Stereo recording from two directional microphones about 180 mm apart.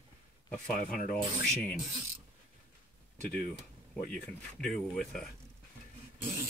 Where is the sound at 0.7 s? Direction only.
50° left (ahead or behind).